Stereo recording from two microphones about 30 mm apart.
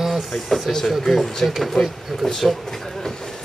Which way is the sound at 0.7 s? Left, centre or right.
Centre.